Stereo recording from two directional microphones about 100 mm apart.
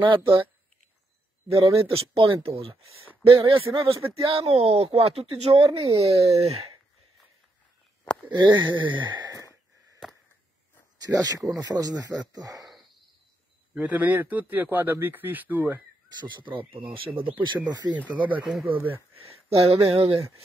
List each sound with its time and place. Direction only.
0.0 s speech: 60° right (ahead or behind)
2.1 s speech: 65° right (ahead or behind)
4.3 s speech: 80° right
8.3 s speech: 50° right (ahead or behind)
11.0 s speech: 35° right (ahead or behind)
13.7 s speech: 15° right (ahead or behind)
16.2 s speech: 50° right (ahead or behind)
17.9 s speech: 15° right (ahead or behind)
18.7 s speech: 20° right (ahead or behind)
19.5 s speech: 90° right